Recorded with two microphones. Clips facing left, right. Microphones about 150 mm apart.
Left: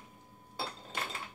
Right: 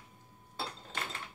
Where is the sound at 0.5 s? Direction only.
10° left (ahead or behind).